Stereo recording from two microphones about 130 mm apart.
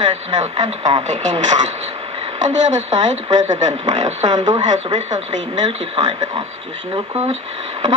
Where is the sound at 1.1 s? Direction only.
65° right (ahead or behind).